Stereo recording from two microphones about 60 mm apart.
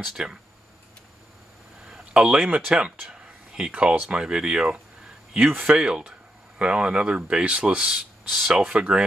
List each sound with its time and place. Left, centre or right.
0.0 s speech: centre
1.9 s a sound: centre
4.1 s speech: centre
8.3 s speech: centre
8.6 s speech: centre